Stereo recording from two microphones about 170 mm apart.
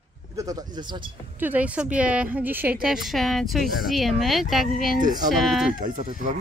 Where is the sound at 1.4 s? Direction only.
10° right (ahead or behind).